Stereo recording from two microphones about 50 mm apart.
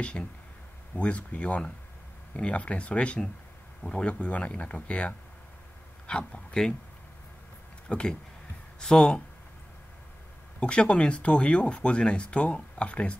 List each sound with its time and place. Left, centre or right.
0.0 s speech: left
7.9 s speech: centre
10.6 s speech: centre